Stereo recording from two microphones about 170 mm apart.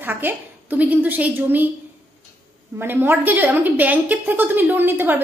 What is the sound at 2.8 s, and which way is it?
A woman's voice, 15° right (ahead or behind).